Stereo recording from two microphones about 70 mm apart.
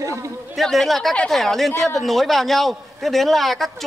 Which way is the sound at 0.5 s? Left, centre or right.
Centre.